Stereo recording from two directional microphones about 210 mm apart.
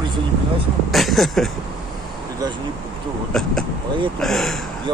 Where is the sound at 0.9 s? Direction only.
Centre (ahead or behind).